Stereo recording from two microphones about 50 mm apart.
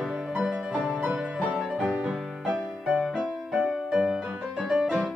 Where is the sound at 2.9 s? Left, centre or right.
Centre.